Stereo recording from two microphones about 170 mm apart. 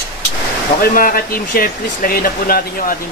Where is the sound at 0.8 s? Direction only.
55° left (ahead or behind).